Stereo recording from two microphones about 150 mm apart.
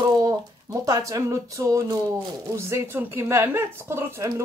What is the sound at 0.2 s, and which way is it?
A woman's voice, 20° right (ahead or behind).